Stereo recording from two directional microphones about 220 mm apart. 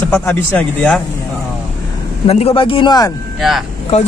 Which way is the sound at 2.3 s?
25° left (ahead or behind).